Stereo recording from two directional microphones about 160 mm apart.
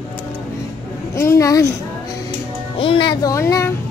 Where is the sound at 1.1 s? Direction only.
20° left (ahead or behind).